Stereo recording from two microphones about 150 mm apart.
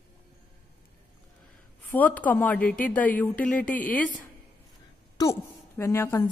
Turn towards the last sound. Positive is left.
turn(degrees=15)  # may be behind; listen again after turning